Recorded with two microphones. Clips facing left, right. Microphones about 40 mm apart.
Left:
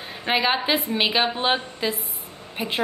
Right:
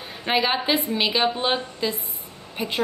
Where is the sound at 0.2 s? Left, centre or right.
Centre.